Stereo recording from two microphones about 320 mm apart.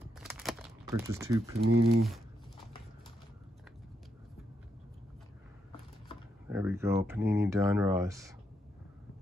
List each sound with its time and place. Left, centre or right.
0.2 s a sound: centre
0.8 s speech: centre
1.7 s speech: right
6.5 s speech: centre